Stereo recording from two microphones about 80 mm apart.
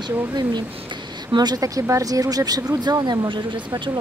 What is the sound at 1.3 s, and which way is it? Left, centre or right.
A woman's voice, right.